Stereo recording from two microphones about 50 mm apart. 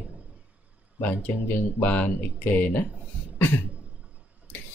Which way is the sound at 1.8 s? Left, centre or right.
Left.